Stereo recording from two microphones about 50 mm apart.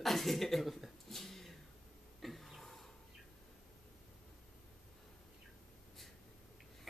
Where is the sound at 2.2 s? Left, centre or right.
Centre.